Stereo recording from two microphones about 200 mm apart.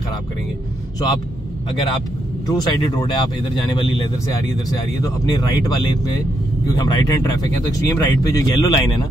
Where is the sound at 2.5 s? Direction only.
20° left (ahead or behind).